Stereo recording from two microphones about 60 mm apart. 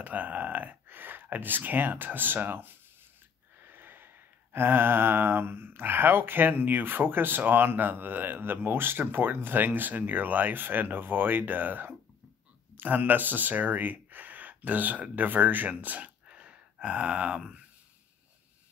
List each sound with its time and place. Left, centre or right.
0.0 s speech: right